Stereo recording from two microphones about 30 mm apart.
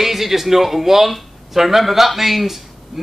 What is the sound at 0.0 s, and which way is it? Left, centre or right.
A man's voice, centre.